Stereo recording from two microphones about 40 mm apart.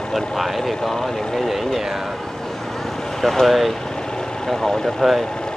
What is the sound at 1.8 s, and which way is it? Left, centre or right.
Speech, centre.